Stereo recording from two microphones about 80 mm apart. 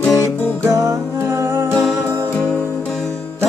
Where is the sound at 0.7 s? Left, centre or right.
Right.